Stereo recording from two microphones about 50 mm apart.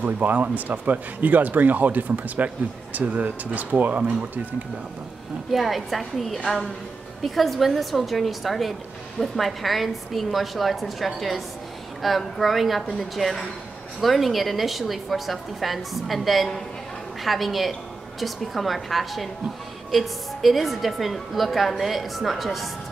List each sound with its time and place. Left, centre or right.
0.0 s speech: right
5.5 s a woman's voice: centre